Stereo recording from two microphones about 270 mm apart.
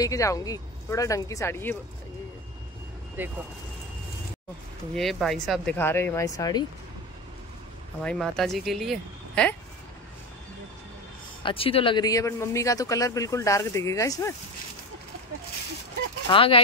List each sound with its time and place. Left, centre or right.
0.0 s speech: centre
3.2 s speech: centre
4.9 s speech: centre
8.0 s speech: centre
11.4 s speech: left
16.3 s speech: centre